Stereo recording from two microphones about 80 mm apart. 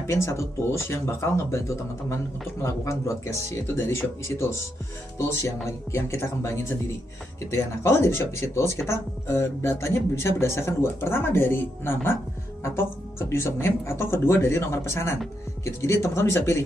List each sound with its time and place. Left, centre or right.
0.0 s speech: left
13.3 s speech: left